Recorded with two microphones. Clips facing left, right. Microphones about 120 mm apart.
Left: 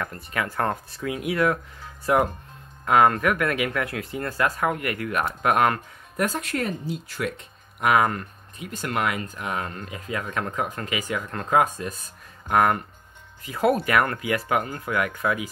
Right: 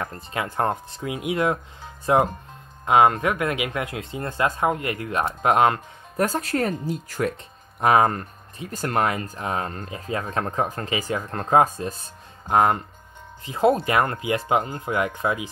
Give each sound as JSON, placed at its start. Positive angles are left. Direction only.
{"t": 0.0, "sound": "speech", "side_deg": -25}
{"t": 6.2, "sound": "speech", "side_deg": -35}